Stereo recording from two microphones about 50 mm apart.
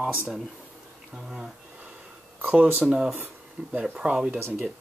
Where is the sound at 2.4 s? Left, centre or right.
Right.